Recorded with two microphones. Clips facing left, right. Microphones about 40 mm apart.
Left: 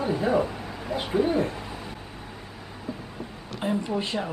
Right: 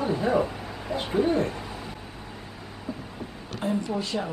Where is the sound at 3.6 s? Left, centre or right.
Centre.